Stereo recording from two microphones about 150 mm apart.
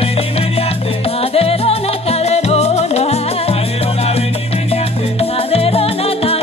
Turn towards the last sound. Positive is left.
turn(degrees=40)  # may be behind; listen again after turning